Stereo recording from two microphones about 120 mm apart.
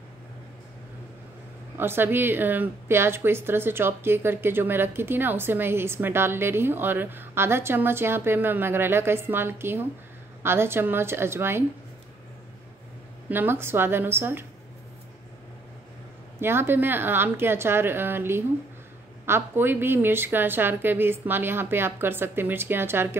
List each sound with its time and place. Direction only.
1.8 s a woman's voice: 20° right (ahead or behind)
13.3 s a woman's voice: 15° right (ahead or behind)
16.3 s a woman's voice: 20° right (ahead or behind)